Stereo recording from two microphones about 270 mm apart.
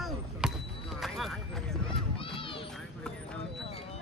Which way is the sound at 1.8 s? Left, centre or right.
Centre.